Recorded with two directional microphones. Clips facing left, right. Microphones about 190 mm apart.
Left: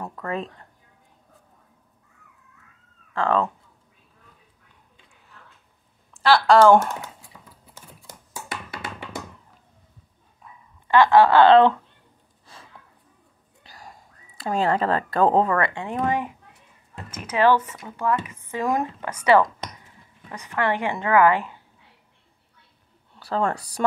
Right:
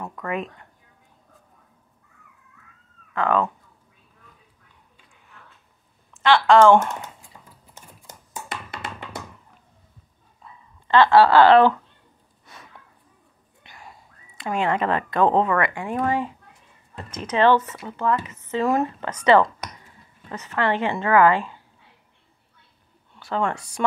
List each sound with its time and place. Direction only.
0.0 s speech: 30° left (ahead or behind)
3.1 s speech: 30° left (ahead or behind)
6.1 s a woman's voice: 35° left (ahead or behind)
10.4 s a sound: 15° left (ahead or behind); by 12.6 s 30° left (ahead or behind)
13.7 s speech: 40° left (ahead or behind); by 21.5 s 15° left (ahead or behind)
23.1 s speech: 35° left (ahead or behind)